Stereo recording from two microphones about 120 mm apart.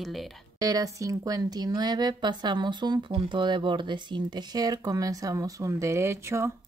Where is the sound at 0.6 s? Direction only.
30° right (ahead or behind).